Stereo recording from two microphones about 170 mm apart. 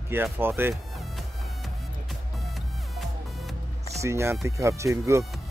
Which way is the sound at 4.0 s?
15° right (ahead or behind).